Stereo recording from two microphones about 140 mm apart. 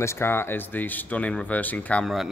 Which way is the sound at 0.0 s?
20° left (ahead or behind).